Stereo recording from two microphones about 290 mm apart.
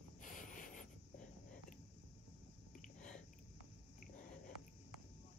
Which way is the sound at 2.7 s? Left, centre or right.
Left.